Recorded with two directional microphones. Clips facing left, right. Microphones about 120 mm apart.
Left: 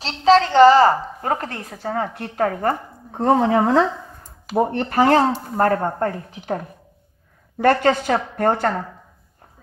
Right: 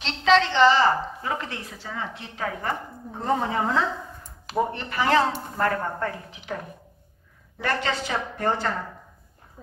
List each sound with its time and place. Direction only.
0.0 s a woman's voice: 35° left (ahead or behind)
3.2 s a woman's voice: 65° left (ahead or behind)
4.6 s a woman's voice: 50° left (ahead or behind)